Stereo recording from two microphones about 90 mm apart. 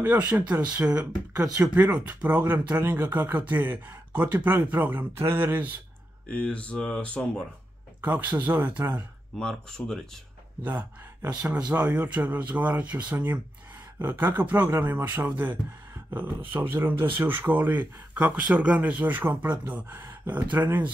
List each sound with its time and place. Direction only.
0.0 s speech: 20° right (ahead or behind)
1.3 s speech: 35° right (ahead or behind)
1.6 s speech: 15° right (ahead or behind)
6.2 s speech: 10° left (ahead or behind)
8.0 s speech: 20° right (ahead or behind)
9.4 s speech: 5° left (ahead or behind)
11.7 s speech: 15° right (ahead or behind)